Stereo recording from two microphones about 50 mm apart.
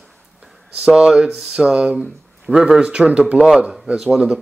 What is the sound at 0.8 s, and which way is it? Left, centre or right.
A man's voice, centre.